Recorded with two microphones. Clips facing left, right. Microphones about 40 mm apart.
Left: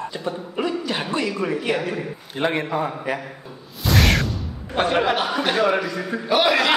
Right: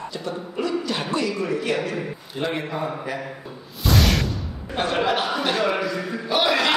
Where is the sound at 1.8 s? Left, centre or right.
Centre.